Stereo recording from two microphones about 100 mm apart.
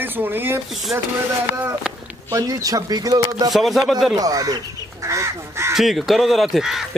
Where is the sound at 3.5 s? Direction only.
Centre (ahead or behind).